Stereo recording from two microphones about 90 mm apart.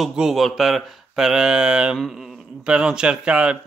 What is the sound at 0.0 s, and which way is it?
Speech, 5° right (ahead or behind).